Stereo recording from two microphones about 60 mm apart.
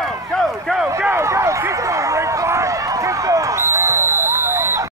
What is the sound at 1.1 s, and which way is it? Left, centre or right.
Run, right.